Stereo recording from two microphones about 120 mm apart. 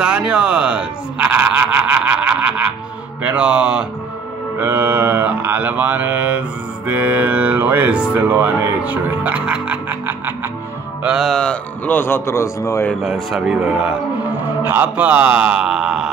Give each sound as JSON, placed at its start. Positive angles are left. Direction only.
{"t": 0.0, "sound": "a sound", "side_deg": -10}
{"t": 3.2, "sound": "speech", "side_deg": -10}
{"t": 11.1, "sound": "a man's voice", "side_deg": 0}
{"t": 13.0, "sound": "speech", "side_deg": 0}